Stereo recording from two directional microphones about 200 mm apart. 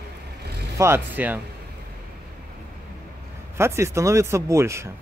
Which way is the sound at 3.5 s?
15° right (ahead or behind).